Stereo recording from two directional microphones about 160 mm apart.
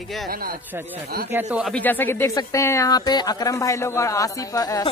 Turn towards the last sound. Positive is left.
turn(degrees=20)  # may be behind; listen again after turning